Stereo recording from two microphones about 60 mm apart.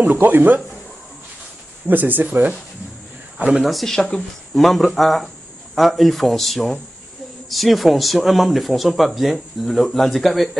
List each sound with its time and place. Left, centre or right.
0.1 s speech: right
1.9 s speech: right
3.6 s speech: centre